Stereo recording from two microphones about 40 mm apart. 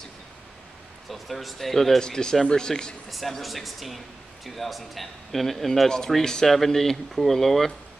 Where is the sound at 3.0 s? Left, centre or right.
Centre.